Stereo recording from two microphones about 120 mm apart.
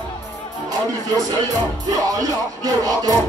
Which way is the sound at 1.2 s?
35° right (ahead or behind).